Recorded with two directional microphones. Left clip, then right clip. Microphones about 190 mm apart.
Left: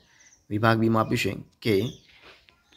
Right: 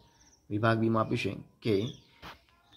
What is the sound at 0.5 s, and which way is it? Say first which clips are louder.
Speech: left 6 dB; 15° left (ahead or behind).